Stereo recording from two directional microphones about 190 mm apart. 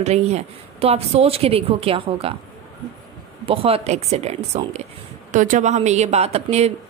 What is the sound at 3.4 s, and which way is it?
A woman's voice, 30° right (ahead or behind).